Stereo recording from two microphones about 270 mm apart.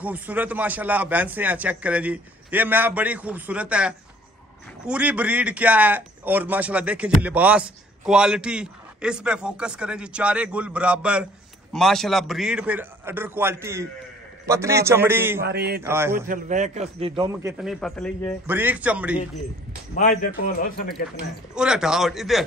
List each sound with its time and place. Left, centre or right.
0.0 s a man's voice: centre
15.4 s a sound: right
15.8 s a man's voice: centre
16.3 s a man's voice: right; by 18.3 s centre
18.5 s a man's voice: centre
20.0 s a man's voice: left
21.5 s a man's voice: centre